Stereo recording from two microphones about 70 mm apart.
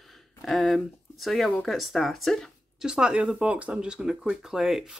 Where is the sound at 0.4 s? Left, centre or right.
Centre.